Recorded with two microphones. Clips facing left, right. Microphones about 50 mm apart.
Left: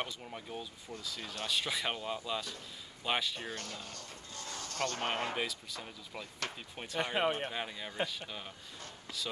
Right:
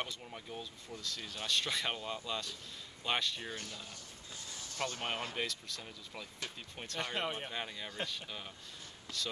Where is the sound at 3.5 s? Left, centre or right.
Left.